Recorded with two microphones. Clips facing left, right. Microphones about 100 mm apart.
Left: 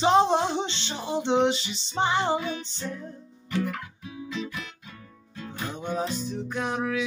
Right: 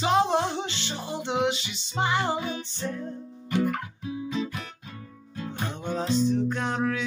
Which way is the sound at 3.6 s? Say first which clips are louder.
Right 5 dB; 35° right (ahead or behind).